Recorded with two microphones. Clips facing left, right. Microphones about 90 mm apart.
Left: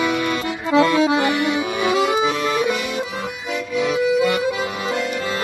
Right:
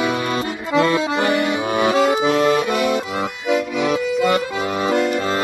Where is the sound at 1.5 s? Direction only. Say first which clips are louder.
Right 2 dB; 35° right (ahead or behind).